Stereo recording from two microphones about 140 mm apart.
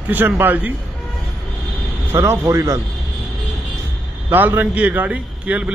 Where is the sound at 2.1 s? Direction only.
20° right (ahead or behind).